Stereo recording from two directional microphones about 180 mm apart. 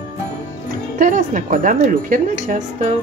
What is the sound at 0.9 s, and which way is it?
Speech, 45° right (ahead or behind).